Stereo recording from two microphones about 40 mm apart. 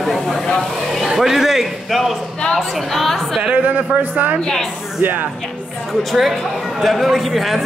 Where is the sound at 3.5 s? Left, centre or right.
Right.